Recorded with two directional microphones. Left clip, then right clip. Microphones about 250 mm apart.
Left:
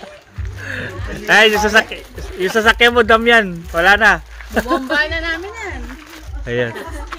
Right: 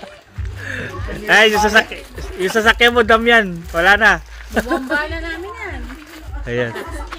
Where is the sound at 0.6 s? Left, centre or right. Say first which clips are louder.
Even; centre.